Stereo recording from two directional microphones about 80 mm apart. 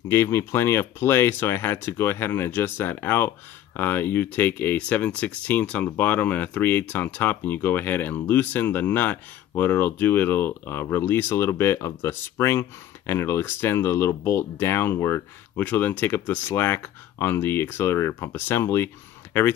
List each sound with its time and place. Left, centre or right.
0.1 s speech: left
15.5 s speech: left